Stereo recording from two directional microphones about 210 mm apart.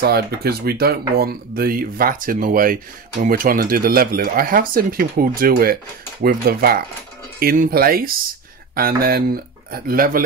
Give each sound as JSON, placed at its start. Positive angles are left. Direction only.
{"t": 0.0, "sound": "speech", "side_deg": -50}